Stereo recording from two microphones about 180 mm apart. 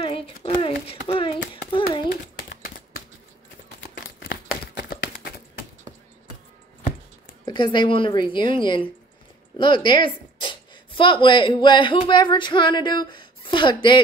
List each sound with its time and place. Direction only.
0.0 s a sound: 30° left (ahead or behind)
1.5 s hands: 30° left (ahead or behind)
4.7 s run: 60° left (ahead or behind)
7.4 s a woman's voice: 25° left (ahead or behind)